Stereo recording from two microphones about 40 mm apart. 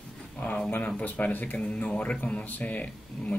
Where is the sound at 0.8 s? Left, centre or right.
Left.